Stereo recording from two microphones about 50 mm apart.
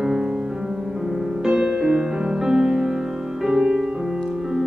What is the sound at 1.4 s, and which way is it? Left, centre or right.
Music, centre.